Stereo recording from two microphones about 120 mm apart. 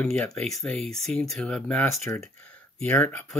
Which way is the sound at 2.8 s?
15° left (ahead or behind).